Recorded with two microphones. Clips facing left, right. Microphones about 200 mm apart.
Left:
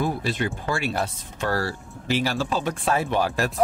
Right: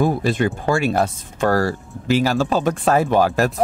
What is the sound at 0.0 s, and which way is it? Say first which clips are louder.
Speech: right 7 dB; 50° right (ahead or behind).